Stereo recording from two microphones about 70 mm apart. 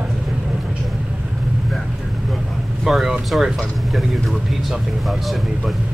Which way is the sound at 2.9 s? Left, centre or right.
Centre.